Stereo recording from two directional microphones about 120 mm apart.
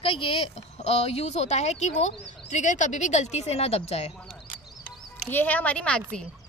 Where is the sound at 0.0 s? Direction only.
50° left (ahead or behind).